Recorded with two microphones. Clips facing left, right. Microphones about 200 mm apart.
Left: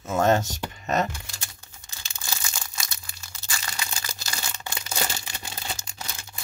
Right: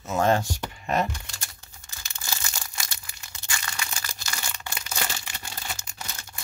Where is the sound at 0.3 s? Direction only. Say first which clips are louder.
Left 2 dB; 20° left (ahead or behind).